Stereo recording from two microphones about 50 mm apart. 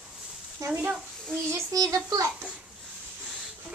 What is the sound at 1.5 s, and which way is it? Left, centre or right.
Child singing, right.